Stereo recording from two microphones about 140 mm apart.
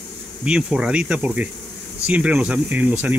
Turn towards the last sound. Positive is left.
turn(degrees=-10)  # may be behind; listen again after turning